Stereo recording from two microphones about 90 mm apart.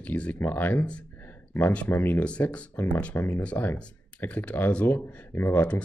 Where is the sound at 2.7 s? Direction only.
25° left (ahead or behind).